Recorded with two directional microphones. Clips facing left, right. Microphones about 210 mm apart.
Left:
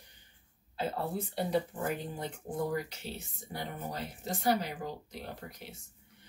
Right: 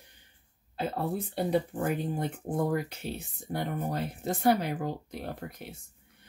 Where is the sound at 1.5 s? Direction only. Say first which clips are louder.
Right 5 dB; 55° right (ahead or behind).